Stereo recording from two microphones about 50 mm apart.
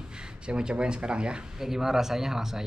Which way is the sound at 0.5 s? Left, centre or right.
Centre.